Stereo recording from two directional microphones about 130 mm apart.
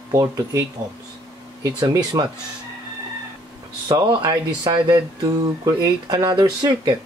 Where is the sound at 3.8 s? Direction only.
35° right (ahead or behind).